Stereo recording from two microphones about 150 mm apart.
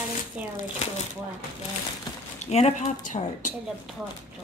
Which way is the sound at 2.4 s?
50° left (ahead or behind).